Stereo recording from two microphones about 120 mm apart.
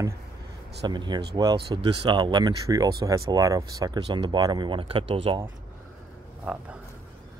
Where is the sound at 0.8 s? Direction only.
35° right (ahead or behind).